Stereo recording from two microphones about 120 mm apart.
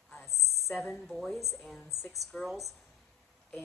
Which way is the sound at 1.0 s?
Centre (ahead or behind).